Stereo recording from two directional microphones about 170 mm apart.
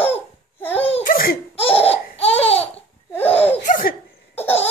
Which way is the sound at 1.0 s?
55° left (ahead or behind).